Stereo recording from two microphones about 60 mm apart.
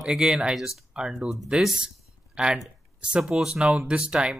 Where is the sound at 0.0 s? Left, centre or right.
Centre.